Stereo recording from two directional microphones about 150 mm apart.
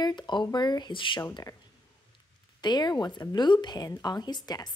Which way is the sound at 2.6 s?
30° left (ahead or behind).